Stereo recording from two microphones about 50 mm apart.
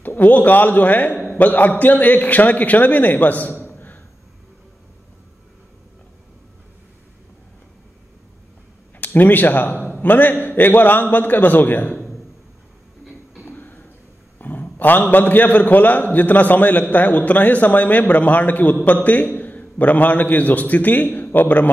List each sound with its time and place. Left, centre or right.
0.0 s a man's voice: left
8.9 s a man's voice: left
13.0 s music: centre
13.5 s a sound: left
14.4 s a man's voice: left